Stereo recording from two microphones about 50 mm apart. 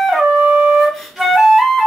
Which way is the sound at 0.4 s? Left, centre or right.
Centre.